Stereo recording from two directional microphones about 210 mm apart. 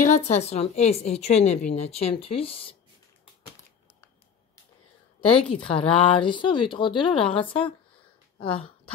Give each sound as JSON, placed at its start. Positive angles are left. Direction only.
{"t": 0.0, "sound": "a woman's voice", "side_deg": 30}
{"t": 5.2, "sound": "a woman's voice", "side_deg": 25}